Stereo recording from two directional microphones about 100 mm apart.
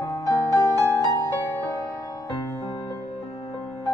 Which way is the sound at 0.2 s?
40° left (ahead or behind).